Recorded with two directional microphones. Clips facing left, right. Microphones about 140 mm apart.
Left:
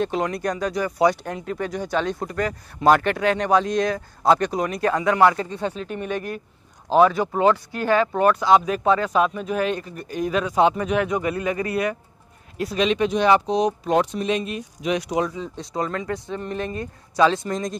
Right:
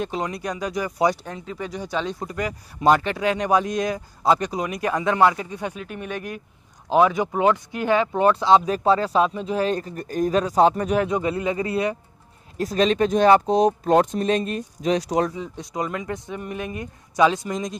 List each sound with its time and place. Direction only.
0.4 s speech: 10° right (ahead or behind); by 11.1 s 40° right (ahead or behind)
11.1 s speech: 25° right (ahead or behind)
12.5 s speech: 40° right (ahead or behind)
15.3 s speech: 15° right (ahead or behind)